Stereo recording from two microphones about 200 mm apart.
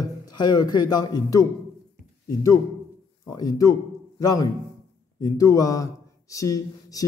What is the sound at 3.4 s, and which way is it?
Speech, 15° left (ahead or behind).